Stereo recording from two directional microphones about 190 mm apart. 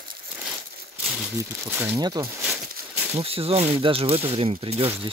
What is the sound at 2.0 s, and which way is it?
Speech, 20° right (ahead or behind).